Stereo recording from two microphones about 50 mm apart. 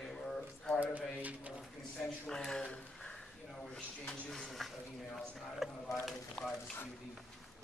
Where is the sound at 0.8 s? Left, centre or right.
Right.